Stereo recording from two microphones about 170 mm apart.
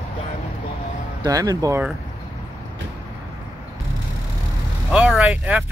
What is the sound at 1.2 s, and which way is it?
Speech, 20° right (ahead or behind).